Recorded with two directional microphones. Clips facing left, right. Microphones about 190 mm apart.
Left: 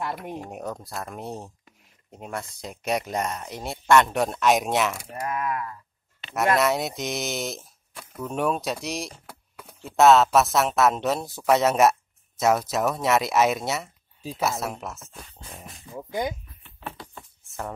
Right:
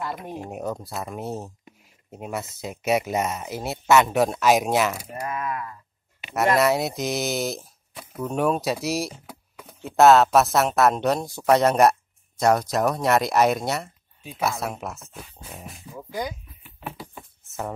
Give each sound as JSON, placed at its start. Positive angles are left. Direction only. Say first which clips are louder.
{"t": 0.4, "sound": "speech", "louder": "right 3 dB", "side_deg": 0}
{"t": 6.5, "sound": "speech", "louder": "right 2 dB", "side_deg": 0}
{"t": 16.0, "sound": "speech", "louder": "left 2 dB", "side_deg": 20}
{"t": 16.6, "sound": "patter", "louder": "right 2 dB", "side_deg": -5}
{"t": 17.5, "sound": "speech", "louder": "right 3 dB", "side_deg": 0}